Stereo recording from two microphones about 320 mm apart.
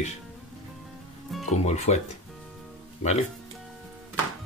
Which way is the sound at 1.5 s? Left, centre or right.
Left.